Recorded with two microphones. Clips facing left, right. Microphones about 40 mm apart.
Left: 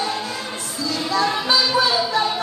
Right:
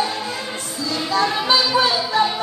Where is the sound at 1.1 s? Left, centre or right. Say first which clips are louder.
Right 2 dB; right.